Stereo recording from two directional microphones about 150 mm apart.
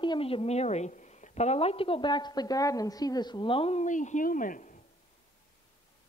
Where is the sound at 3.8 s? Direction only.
55° left (ahead or behind).